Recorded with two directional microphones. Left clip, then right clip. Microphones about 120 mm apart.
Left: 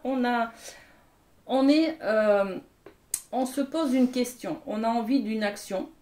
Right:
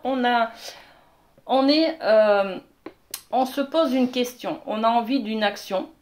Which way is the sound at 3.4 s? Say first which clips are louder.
Right 7 dB; 40° left (ahead or behind).